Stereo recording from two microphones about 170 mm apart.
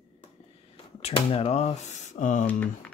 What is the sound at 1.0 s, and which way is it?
Speech, 35° left (ahead or behind).